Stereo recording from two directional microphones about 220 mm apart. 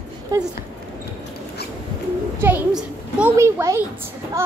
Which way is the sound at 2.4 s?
5° right (ahead or behind).